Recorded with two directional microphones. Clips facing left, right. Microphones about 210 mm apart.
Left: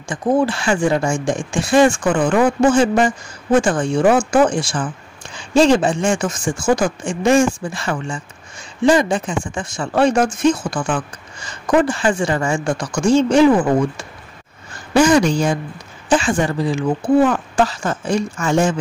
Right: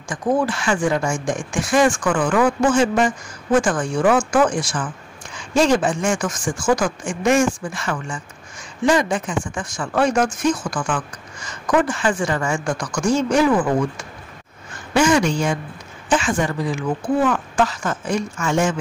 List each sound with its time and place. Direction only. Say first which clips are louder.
0.1 s a woman's voice: left 3 dB; 30° left (ahead or behind)